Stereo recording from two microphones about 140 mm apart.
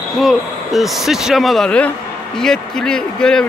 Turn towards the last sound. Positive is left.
turn(degrees=5)  # may be behind; listen again after turning